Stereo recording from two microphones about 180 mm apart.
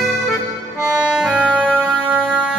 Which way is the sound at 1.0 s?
5° right (ahead or behind).